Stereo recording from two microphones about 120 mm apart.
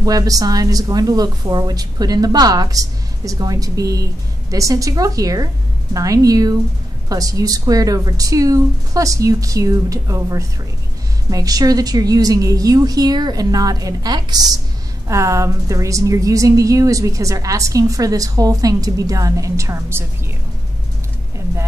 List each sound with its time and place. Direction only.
0.0 s a woman's voice: 30° right (ahead or behind)